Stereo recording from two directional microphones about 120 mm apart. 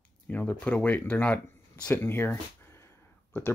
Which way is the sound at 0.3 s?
15° left (ahead or behind).